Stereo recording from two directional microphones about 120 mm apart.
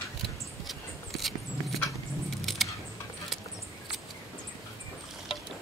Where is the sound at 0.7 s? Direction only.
Centre (ahead or behind).